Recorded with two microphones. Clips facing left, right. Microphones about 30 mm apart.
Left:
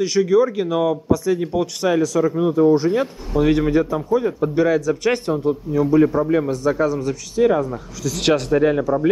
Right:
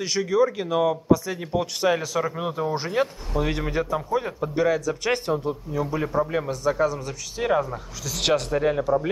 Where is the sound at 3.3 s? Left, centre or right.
Centre.